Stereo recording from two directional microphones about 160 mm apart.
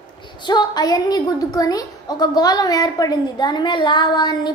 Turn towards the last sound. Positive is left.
turn(degrees=30)  # may be behind; listen again after turning